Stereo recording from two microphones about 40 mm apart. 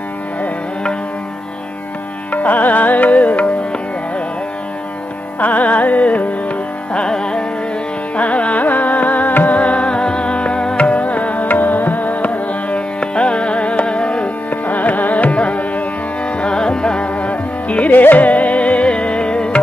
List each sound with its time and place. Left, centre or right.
2.3 s music: left
3.2 s music: left
5.4 s music: left
6.9 s music: left
7.2 s carnatic music: left
8.2 s carnatic music: left
9.6 s music: left
10.9 s music: left
14.5 s classical music: left
16.3 s music: left
17.9 s music: left